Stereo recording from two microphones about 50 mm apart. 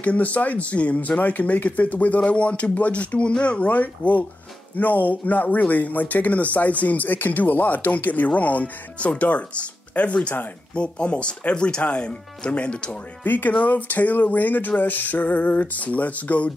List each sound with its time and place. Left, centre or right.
0.0 s speech: left
13.2 s speech: left